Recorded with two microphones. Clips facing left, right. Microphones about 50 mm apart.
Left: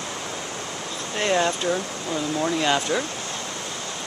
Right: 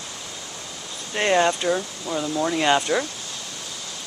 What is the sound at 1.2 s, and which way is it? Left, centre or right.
Speech, centre.